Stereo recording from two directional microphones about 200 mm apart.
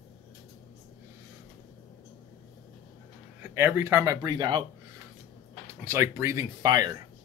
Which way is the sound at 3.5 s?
15° right (ahead or behind).